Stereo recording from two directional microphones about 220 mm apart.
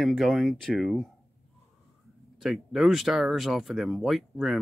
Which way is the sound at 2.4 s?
Centre (ahead or behind).